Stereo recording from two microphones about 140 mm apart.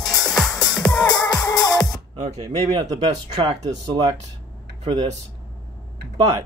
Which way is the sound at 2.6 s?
25° right (ahead or behind).